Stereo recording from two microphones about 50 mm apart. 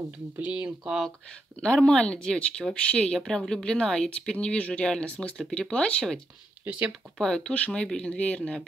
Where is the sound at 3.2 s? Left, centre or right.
Centre.